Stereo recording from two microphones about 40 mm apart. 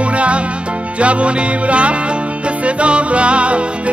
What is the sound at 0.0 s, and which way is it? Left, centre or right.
Music, right.